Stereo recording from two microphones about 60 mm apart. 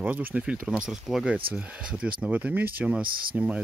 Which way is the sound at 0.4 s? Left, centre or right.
Centre.